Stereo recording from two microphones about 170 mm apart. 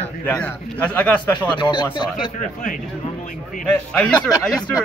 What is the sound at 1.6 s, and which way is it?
Speech, 25° left (ahead or behind).